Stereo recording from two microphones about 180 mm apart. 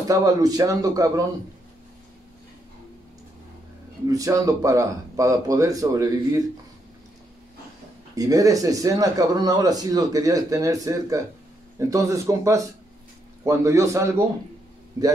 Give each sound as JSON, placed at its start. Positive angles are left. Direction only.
{"t": 0.1, "sound": "speech", "side_deg": -20}
{"t": 4.1, "sound": "speech", "side_deg": -20}
{"t": 8.2, "sound": "a man's voice", "side_deg": -20}